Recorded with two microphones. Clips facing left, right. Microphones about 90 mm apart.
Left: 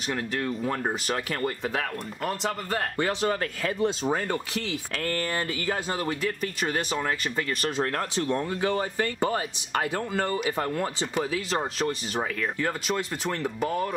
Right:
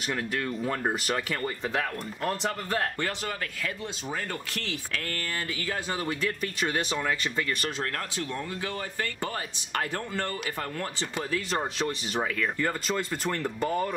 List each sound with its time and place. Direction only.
0.1 s speech: 5° left (ahead or behind)
3.0 s speech: 20° left (ahead or behind)
4.9 s speech: 30° left (ahead or behind)
5.9 s speech: 5° left (ahead or behind)
8.2 s speech: 35° left (ahead or behind); by 10.5 s 10° left (ahead or behind)
10.6 s speech: 20° left (ahead or behind)
11.1 s speech: 5° left (ahead or behind)